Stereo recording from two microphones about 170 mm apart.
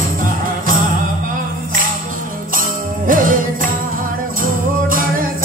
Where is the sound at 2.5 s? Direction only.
55° right (ahead or behind).